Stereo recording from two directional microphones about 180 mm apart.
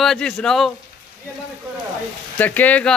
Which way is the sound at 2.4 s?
10° left (ahead or behind).